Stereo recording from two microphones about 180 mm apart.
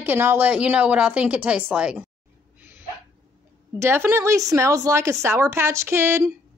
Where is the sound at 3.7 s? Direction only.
15° right (ahead or behind).